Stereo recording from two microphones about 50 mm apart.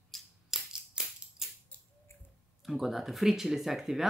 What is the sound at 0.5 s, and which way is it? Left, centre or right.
Cap gun, centre.